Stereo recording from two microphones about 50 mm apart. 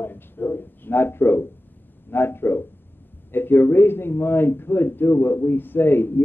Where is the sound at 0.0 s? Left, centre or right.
Left.